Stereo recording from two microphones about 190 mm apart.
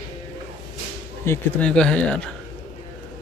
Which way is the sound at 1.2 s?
5° left (ahead or behind).